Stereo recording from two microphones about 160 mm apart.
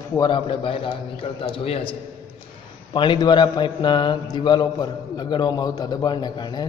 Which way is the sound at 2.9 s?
30° left (ahead or behind).